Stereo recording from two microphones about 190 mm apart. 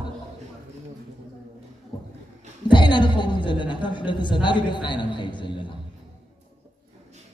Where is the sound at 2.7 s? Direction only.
25° left (ahead or behind).